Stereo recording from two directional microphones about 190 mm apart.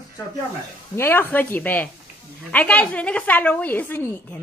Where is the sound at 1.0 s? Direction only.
10° left (ahead or behind).